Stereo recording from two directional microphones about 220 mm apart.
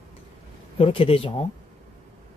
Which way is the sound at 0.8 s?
25° left (ahead or behind).